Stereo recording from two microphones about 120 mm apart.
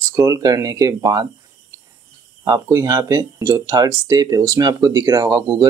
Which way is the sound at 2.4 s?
25° right (ahead or behind).